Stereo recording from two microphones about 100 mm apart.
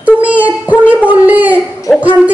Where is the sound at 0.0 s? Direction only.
15° right (ahead or behind).